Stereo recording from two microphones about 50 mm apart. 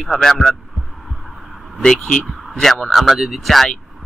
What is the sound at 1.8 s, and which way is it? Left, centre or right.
Speech, centre.